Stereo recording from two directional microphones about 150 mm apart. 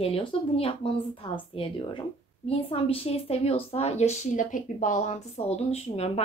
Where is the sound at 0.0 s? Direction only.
40° left (ahead or behind).